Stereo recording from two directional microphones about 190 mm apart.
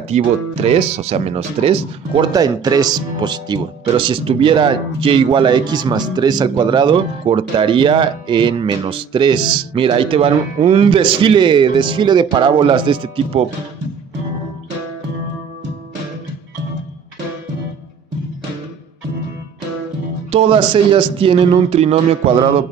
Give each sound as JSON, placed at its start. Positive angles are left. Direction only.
{"t": 0.1, "sound": "speech", "side_deg": -30}
{"t": 20.3, "sound": "speech", "side_deg": -25}